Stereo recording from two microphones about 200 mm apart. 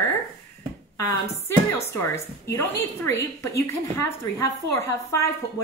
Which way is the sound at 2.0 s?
10° left (ahead or behind).